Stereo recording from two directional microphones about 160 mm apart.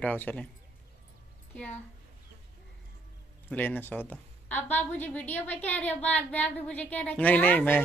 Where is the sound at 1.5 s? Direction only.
10° left (ahead or behind).